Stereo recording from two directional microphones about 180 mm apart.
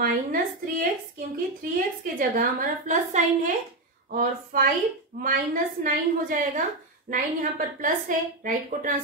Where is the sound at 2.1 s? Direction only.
50° right (ahead or behind).